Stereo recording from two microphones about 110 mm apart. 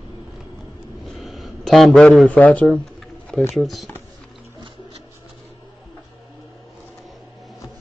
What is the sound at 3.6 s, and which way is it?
Speech, centre (ahead or behind).